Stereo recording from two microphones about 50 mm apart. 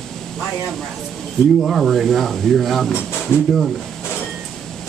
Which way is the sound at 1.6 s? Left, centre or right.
Centre.